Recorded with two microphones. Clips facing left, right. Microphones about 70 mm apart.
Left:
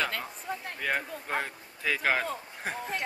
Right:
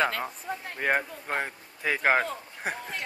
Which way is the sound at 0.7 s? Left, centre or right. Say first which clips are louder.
Right 5 dB; right.